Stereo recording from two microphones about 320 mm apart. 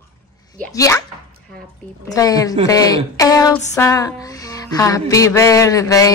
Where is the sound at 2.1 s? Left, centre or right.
Centre.